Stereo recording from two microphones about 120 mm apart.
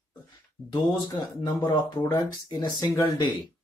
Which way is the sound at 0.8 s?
35° left (ahead or behind).